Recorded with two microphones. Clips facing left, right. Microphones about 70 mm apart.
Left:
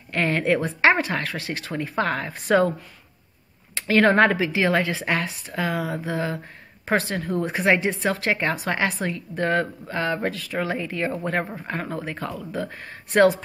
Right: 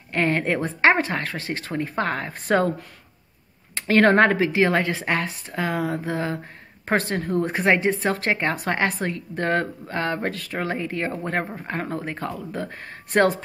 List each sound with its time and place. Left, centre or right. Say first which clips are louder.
0.1 s speech: left 1 dB; right
3.7 s speech: right 1 dB; right